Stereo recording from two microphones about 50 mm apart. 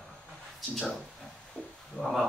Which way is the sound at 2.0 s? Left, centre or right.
Left.